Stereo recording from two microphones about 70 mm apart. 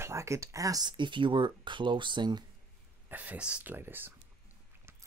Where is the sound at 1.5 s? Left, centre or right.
Right.